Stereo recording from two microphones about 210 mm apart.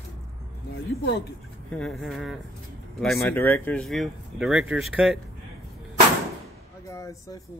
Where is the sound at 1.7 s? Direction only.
Centre (ahead or behind).